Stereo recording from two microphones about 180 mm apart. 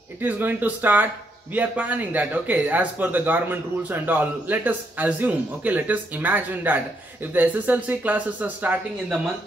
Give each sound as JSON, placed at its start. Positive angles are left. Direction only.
{"t": 0.2, "sound": "speech", "side_deg": -10}